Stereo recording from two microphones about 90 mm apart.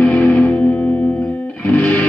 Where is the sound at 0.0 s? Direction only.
10° left (ahead or behind).